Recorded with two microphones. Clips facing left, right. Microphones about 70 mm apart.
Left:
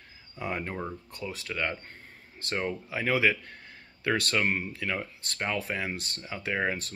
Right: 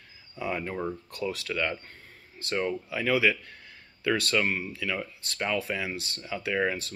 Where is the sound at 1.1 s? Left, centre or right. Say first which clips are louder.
Right 5 dB; left.